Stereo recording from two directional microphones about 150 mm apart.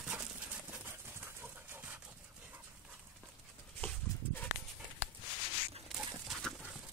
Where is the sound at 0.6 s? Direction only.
15° right (ahead or behind).